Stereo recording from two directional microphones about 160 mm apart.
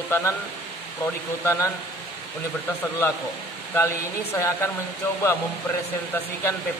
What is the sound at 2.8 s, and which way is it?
Speech, 10° left (ahead or behind).